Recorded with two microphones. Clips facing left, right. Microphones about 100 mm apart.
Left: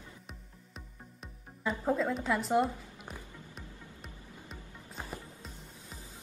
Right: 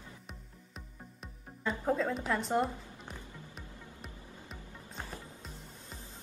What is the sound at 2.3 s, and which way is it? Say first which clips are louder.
Speech: left 3 dB; centre (ahead or behind).